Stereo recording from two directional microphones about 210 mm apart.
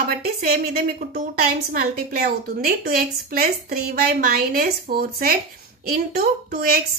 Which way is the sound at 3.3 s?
45° right (ahead or behind).